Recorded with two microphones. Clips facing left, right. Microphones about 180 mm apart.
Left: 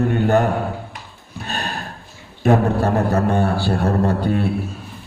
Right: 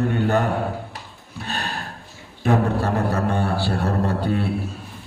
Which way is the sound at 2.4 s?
45° left (ahead or behind).